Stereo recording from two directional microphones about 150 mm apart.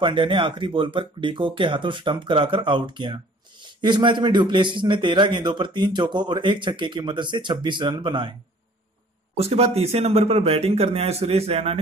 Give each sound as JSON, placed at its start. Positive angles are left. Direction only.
{"t": 0.0, "sound": "a man's voice", "side_deg": -35}
{"t": 9.4, "sound": "a man's voice", "side_deg": -45}